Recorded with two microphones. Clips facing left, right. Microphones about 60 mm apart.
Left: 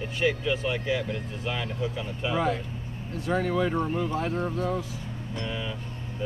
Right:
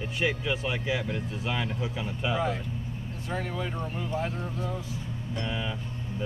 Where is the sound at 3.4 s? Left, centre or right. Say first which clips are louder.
Left 8 dB; left.